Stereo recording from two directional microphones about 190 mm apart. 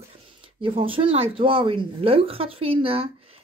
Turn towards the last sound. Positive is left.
turn(degrees=-30)  # may be behind; listen again after turning